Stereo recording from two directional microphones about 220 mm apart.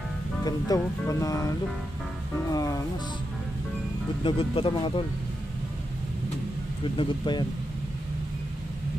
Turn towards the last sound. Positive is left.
turn(degrees=20)  # may be behind; listen again after turning